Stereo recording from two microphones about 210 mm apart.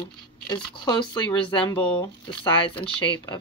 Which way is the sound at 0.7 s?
20° left (ahead or behind).